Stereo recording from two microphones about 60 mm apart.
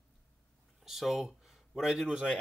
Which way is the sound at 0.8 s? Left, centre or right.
Centre.